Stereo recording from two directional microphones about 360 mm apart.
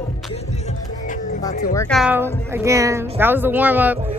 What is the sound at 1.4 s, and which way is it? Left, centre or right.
Speech, centre.